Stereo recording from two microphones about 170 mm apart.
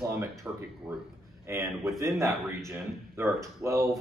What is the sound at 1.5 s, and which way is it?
Speech, 15° right (ahead or behind).